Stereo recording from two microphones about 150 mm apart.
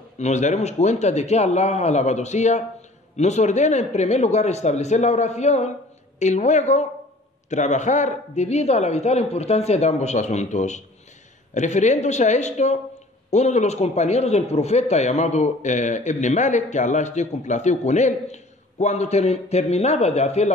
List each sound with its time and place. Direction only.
0.2 s a man's voice: 50° left (ahead or behind)